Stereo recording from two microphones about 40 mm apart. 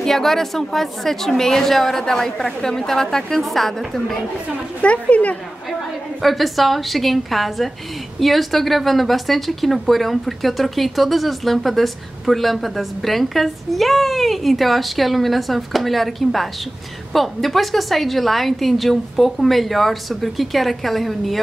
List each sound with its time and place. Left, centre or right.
0.0 s a woman's voice: centre
4.8 s speech: left
6.2 s a woman's voice: centre